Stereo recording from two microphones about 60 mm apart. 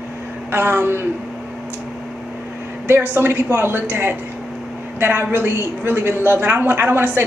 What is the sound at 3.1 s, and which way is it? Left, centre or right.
A woman's voice, right.